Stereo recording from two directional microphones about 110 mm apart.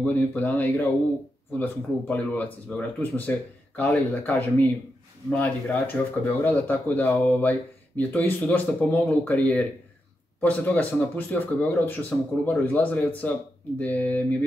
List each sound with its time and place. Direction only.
0.0 s speech: 15° left (ahead or behind)